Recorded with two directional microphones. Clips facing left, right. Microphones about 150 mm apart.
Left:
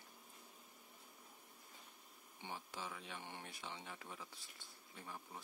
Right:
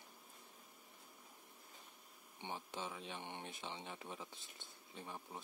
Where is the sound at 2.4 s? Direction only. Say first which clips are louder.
Right 3 dB; 20° right (ahead or behind).